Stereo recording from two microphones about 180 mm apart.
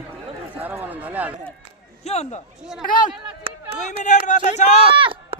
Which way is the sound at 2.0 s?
35° left (ahead or behind).